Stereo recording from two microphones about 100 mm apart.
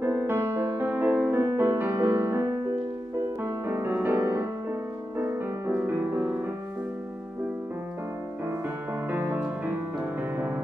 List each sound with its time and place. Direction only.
0.0 s music: 20° right (ahead or behind)
3.6 s music: 25° right (ahead or behind)
9.1 s music: 20° right (ahead or behind)